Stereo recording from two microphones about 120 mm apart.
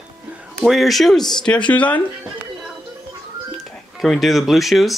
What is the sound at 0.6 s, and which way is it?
Speech, centre (ahead or behind).